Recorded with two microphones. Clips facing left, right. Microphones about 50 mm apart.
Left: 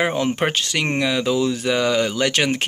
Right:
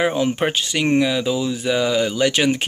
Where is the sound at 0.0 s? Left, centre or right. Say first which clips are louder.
Right 1 dB; left.